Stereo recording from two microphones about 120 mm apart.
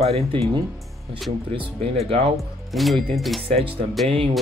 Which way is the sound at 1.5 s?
55° right (ahead or behind).